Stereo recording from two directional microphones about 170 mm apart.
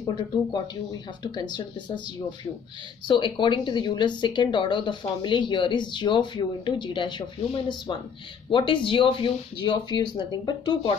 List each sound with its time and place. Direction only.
0.0 s speech: 25° left (ahead or behind)
3.1 s speech: 30° left (ahead or behind)